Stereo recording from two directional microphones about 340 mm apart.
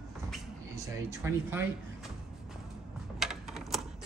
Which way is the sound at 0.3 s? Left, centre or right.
Centre.